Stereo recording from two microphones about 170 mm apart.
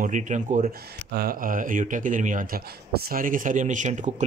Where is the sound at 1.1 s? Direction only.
60° right (ahead or behind).